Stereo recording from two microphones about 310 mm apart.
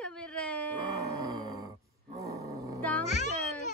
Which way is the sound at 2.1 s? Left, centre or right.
Centre.